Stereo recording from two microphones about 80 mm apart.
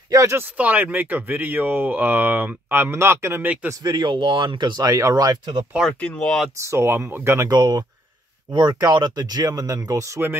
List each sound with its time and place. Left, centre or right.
0.1 s speech: right
0.6 s speech: centre
3.8 s speech: right
5.8 s speech: centre
6.6 s speech: right
7.4 s speech: right